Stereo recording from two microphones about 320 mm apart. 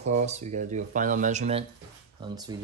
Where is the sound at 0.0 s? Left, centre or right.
Right.